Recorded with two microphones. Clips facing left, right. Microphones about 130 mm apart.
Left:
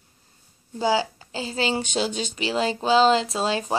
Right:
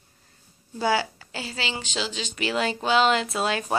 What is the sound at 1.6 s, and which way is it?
Speech, 45° left (ahead or behind).